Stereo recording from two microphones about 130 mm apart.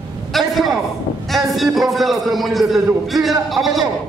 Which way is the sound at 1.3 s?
Centre (ahead or behind).